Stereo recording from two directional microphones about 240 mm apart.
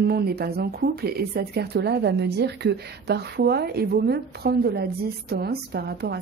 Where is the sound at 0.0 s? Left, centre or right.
Right.